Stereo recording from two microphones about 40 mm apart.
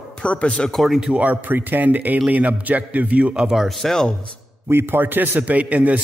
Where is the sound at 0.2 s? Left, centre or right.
Left.